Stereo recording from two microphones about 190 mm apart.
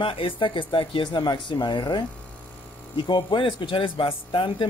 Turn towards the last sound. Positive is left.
turn(degrees=25)  # may be behind; listen again after turning